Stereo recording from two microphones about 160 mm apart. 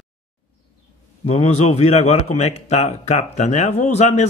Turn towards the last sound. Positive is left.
turn(degrees=45)  # may be behind; listen again after turning